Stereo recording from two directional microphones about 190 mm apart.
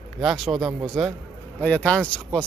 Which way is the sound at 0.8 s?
Centre (ahead or behind).